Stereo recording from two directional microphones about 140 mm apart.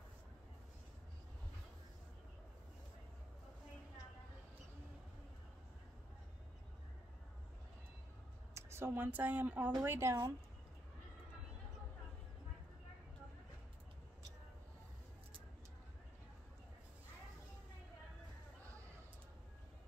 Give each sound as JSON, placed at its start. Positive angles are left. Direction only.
{"t": 8.5, "sound": "speech", "side_deg": -20}